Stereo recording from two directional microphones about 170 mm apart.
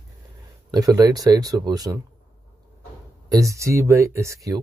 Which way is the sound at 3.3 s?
20° right (ahead or behind).